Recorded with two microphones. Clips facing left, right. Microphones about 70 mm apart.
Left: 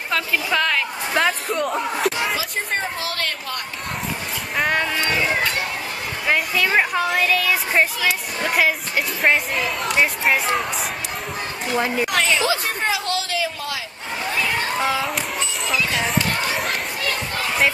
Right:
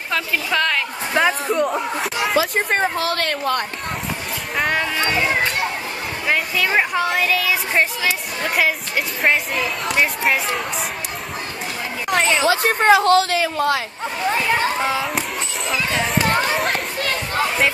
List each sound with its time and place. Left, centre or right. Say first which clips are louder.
0.1 s a woman's voice: even; centre
2.3 s a woman's voice: right 6 dB; right
4.6 s a child's voice: even; centre
6.2 s a child's voice: even; centre
12.1 s speech: right 2 dB; right
12.4 s a woman's voice: right 7 dB; right
14.8 s a child's voice: even; centre